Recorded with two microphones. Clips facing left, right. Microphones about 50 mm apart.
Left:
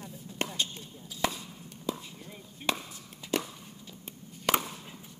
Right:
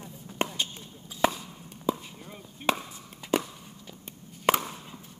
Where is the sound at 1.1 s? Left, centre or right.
Right.